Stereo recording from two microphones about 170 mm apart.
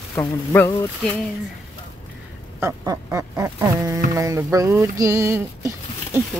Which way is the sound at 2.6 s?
20° right (ahead or behind).